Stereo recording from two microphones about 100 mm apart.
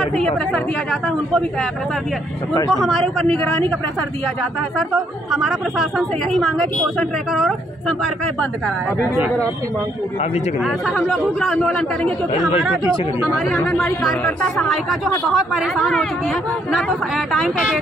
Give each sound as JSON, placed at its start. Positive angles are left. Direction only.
{"t": 0.0, "sound": "speech", "side_deg": 5}
{"t": 2.7, "sound": "speech", "side_deg": 5}
{"t": 3.3, "sound": "a man's voice", "side_deg": 15}
{"t": 5.3, "sound": "speech", "side_deg": -5}
{"t": 9.0, "sound": "speech", "side_deg": -20}
{"t": 10.6, "sound": "speech", "side_deg": 0}
{"t": 14.7, "sound": "speech", "side_deg": 0}